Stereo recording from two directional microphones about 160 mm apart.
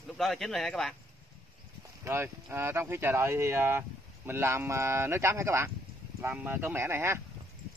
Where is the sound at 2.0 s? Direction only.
15° right (ahead or behind).